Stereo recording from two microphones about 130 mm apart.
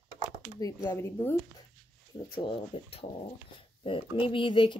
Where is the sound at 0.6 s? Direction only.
25° left (ahead or behind).